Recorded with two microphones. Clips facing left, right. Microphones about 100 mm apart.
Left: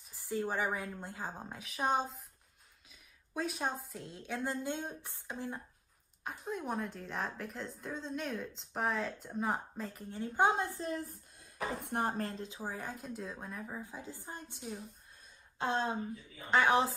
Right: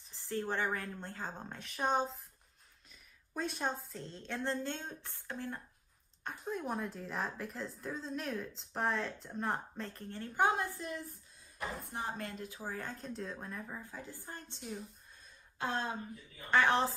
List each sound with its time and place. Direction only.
0.1 s a woman's voice: 10° left (ahead or behind)
6.2 s a woman's voice: centre (ahead or behind); by 11.1 s 35° left (ahead or behind)
11.3 s speech: 70° left (ahead or behind); by 12.4 s 35° left (ahead or behind)
12.4 s a woman's voice: 15° left (ahead or behind)
15.6 s a woman's voice: 20° left (ahead or behind)